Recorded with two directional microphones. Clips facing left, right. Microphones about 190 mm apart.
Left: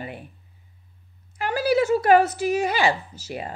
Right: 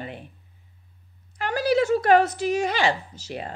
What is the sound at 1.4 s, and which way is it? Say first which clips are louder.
A woman's voice: left 1 dB; 5° left (ahead or behind).